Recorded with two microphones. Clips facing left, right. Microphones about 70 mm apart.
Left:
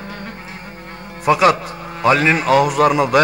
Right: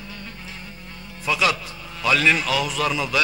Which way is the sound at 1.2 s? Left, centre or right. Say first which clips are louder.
Left 9 dB; left.